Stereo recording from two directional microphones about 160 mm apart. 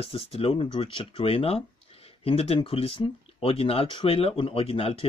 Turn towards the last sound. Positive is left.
turn(degrees=35)  # may be behind; listen again after turning